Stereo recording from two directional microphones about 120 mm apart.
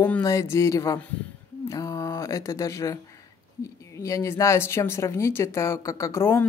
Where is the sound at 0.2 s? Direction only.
25° left (ahead or behind).